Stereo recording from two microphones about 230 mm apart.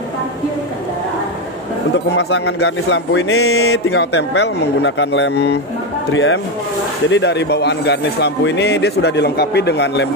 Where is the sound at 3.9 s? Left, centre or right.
Left.